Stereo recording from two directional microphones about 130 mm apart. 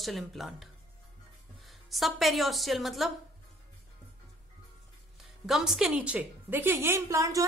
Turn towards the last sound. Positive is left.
turn(degrees=-25)  # may be behind; listen again after turning